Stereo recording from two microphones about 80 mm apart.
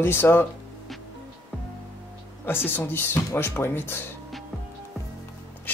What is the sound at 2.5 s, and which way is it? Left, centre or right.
Speech, left.